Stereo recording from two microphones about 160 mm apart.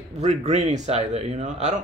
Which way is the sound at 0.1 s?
45° right (ahead or behind).